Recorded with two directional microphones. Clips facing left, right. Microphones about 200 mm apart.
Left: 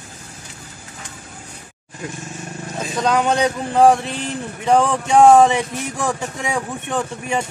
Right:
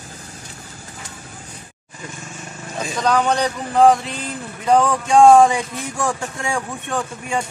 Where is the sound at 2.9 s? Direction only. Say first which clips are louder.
Left 1 dB; 20° left (ahead or behind).